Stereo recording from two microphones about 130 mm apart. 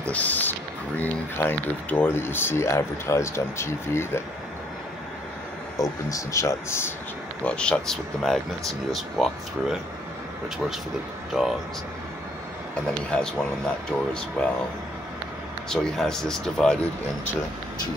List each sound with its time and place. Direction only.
0.0 s speech: 10° left (ahead or behind)
5.8 s speech: 25° left (ahead or behind)
7.4 s speech: 5° left (ahead or behind)
11.3 s speech: centre (ahead or behind)
13.1 s speech: 10° left (ahead or behind)
15.7 s speech: 5° left (ahead or behind)